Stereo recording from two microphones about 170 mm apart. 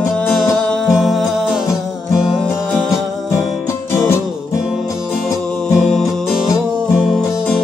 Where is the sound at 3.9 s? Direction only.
15° left (ahead or behind).